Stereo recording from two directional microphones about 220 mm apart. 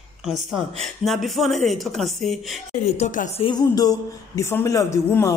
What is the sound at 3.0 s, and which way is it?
Speech, 30° left (ahead or behind).